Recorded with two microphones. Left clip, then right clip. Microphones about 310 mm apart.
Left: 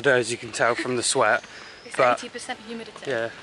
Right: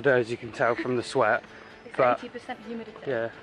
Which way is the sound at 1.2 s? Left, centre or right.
Right.